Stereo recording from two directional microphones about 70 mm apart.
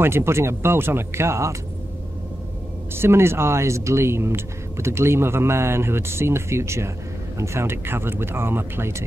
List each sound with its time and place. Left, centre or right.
0.0 s speech: right
2.9 s speech: right